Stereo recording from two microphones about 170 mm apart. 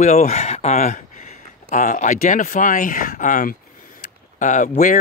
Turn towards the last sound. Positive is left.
turn(degrees=50)  # may be behind; listen again after turning